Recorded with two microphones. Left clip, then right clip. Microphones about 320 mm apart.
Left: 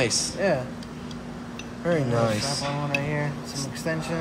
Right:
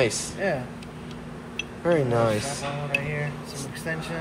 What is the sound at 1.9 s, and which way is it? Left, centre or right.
Speech, centre.